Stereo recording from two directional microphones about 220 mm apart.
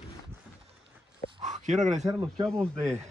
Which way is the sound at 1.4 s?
35° right (ahead or behind).